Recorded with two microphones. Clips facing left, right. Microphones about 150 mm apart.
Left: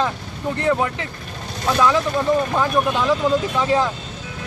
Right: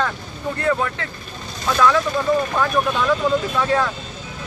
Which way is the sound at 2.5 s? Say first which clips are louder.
Left 1 dB; 15° left (ahead or behind).